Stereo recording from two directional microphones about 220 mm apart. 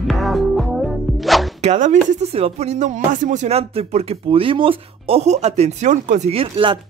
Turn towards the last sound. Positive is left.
turn(degrees=-25)  # may be behind; listen again after turning